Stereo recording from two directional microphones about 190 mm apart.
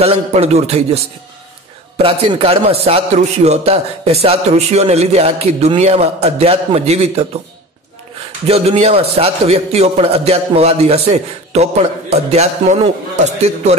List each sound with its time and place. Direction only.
0.0 s a man's voice: 35° right (ahead or behind)
8.5 s a man's voice: 30° right (ahead or behind)